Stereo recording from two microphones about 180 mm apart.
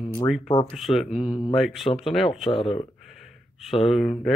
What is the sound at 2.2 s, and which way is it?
Speech, 35° left (ahead or behind).